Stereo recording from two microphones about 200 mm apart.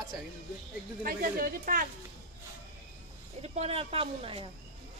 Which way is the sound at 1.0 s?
45° right (ahead or behind).